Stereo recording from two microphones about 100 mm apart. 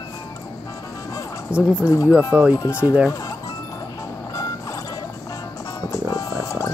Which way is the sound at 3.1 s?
35° left (ahead or behind).